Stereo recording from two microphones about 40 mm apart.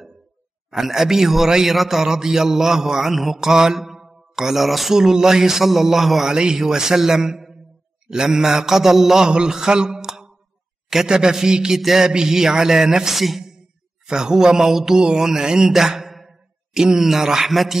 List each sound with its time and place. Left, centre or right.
0.7 s a man's voice: centre
6.2 s a man's voice: centre
14.0 s a man's voice: centre
15.0 s a sound: centre
17.0 s a man's voice: centre